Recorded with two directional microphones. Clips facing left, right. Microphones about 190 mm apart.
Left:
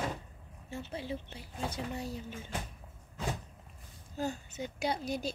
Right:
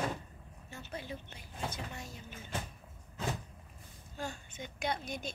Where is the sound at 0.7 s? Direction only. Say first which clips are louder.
Left 5 dB; 30° left (ahead or behind).